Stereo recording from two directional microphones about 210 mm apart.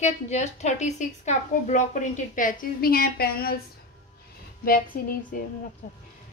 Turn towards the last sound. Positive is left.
turn(degrees=45)  # may be behind; listen again after turning